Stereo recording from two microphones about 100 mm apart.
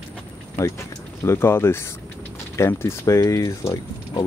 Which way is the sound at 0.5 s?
30° left (ahead or behind).